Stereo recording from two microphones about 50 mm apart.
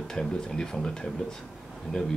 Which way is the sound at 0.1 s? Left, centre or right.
Centre.